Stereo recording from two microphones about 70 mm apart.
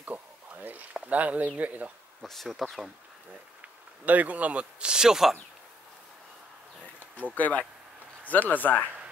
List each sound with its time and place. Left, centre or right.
0.0 s a sound: right
0.9 s speech: centre
2.2 s speech: centre
4.0 s speech: right; by 5.4 s centre
7.3 s speech: left
8.8 s a sound: centre